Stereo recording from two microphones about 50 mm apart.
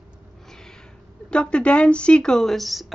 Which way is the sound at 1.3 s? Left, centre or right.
Left.